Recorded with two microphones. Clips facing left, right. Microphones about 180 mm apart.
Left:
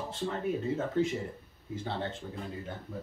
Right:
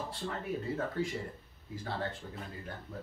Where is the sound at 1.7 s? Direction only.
25° left (ahead or behind).